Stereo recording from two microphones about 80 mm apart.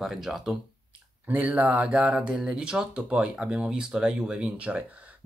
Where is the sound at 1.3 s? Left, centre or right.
Centre.